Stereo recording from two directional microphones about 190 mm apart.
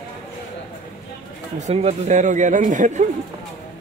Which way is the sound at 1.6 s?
35° right (ahead or behind).